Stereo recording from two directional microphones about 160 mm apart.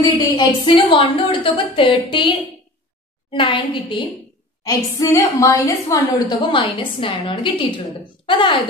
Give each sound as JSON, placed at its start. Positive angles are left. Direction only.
{"t": 0.2, "sound": "a woman's voice", "side_deg": 30}
{"t": 4.6, "sound": "a woman's voice", "side_deg": 20}